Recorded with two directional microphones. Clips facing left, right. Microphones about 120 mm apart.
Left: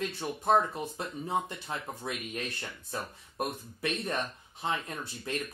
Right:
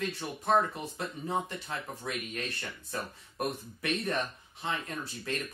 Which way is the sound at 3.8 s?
25° left (ahead or behind).